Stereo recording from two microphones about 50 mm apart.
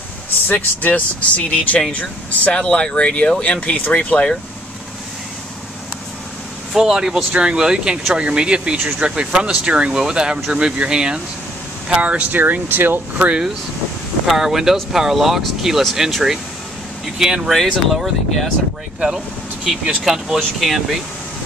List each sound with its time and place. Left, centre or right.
0.5 s speech: left
6.7 s speech: centre; by 13.0 s right
14.2 s speech: centre
18.9 s speech: centre